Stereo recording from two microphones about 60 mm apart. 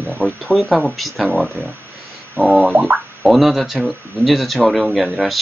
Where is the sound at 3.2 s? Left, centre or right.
Centre.